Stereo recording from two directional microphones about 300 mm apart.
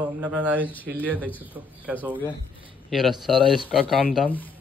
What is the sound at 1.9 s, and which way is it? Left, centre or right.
Speech, centre.